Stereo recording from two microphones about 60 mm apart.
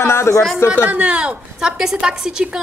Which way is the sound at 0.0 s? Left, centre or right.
Left.